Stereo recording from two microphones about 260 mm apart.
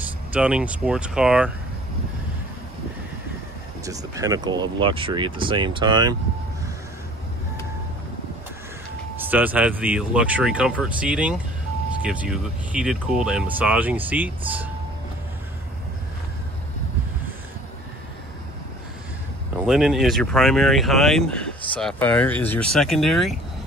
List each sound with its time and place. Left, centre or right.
0.3 s speech: centre
3.8 s speech: centre
9.2 s speech: centre
19.6 s speech: centre